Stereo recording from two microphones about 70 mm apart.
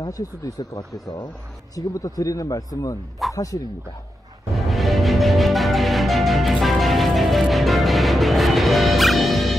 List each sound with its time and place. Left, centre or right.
0.0 s speech: left
4.6 s music: centre